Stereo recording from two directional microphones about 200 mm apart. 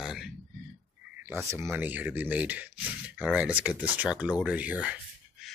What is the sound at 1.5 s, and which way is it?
Speech, 15° right (ahead or behind).